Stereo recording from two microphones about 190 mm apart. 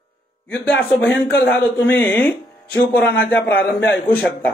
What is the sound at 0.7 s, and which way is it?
A man's voice, 10° left (ahead or behind).